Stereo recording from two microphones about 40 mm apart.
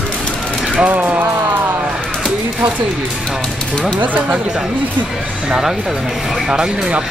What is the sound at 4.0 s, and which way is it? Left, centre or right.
Speech, right.